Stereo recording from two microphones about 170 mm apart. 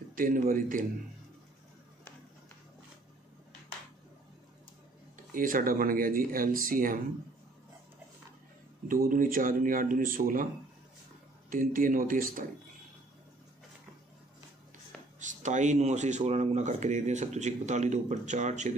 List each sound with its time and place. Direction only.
0.1 s speech: 55° right (ahead or behind)
5.1 s speech: 50° right (ahead or behind)
8.8 s speech: 55° right (ahead or behind)
11.5 s speech: 55° right (ahead or behind)
15.1 s speech: 45° right (ahead or behind)